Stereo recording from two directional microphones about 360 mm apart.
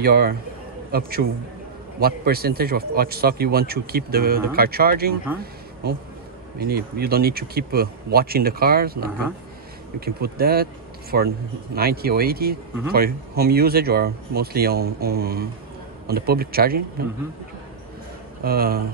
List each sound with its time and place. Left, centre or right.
0.0 s a man's voice: right
6.6 s a man's voice: right
18.4 s a man's voice: right